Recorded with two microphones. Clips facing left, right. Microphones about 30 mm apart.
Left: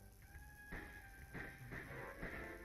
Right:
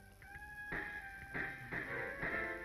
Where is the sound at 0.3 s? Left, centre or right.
Right.